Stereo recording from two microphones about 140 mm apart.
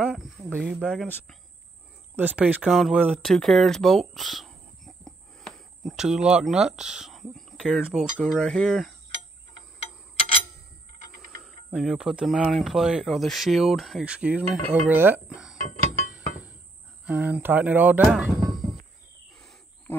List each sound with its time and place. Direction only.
0.6 s speech: 5° right (ahead or behind)
2.1 s speech: 10° right (ahead or behind)
3.2 s a sound: centre (ahead or behind)
6.2 s speech: 5° right (ahead or behind)
11.7 s speech: 5° right (ahead or behind)
15.5 s music: 70° left (ahead or behind)
16.1 s a sound: 10° right (ahead or behind)
17.0 s speech: 10° right (ahead or behind)
18.0 s music: centre (ahead or behind)